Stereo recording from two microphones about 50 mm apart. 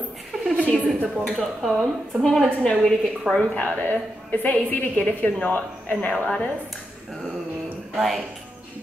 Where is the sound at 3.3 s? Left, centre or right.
Left.